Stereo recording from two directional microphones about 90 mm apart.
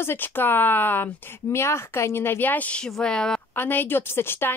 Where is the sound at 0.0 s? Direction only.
25° left (ahead or behind); by 3.3 s 10° left (ahead or behind).